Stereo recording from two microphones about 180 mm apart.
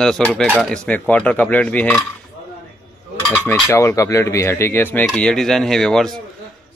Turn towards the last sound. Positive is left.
turn(degrees=0)  # may be behind; listen again after turning